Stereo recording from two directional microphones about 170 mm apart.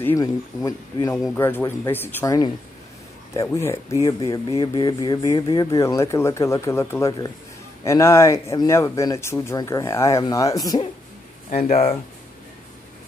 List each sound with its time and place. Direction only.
0.0 s speech: 15° left (ahead or behind)
11.7 s speech: 35° left (ahead or behind)